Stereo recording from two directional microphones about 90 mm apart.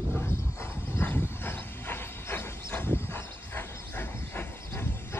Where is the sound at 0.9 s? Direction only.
25° left (ahead or behind).